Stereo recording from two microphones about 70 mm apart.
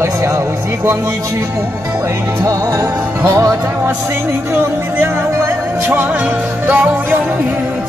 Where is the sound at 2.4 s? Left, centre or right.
Right.